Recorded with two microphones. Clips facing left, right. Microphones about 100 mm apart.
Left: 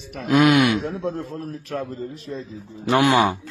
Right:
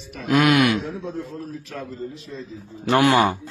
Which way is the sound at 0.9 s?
65° left (ahead or behind).